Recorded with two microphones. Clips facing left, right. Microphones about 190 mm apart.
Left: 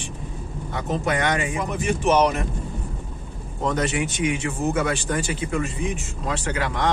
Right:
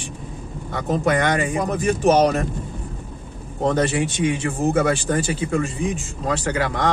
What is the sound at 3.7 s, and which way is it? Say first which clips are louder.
Speech: right 4 dB; 30° right (ahead or behind).